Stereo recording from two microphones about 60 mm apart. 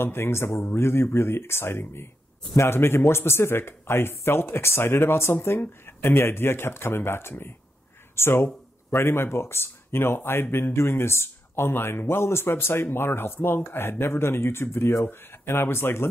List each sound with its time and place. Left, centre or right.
0.0 s speech: left